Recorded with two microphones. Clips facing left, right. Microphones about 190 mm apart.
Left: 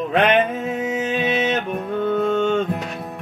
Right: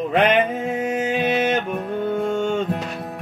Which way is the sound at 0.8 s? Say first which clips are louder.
Right 1 dB; 65° right (ahead or behind).